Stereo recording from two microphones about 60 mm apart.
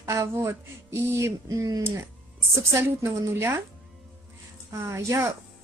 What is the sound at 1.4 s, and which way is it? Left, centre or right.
Speech, right.